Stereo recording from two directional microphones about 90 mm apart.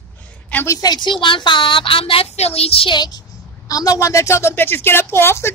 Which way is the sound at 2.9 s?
50° left (ahead or behind).